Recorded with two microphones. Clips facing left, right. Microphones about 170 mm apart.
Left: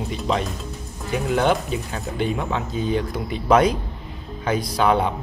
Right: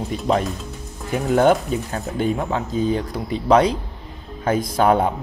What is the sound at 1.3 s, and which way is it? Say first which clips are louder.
Speech: right 5 dB; 45° right (ahead or behind).